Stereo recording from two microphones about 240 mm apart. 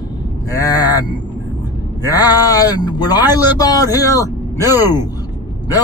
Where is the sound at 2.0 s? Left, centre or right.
Centre.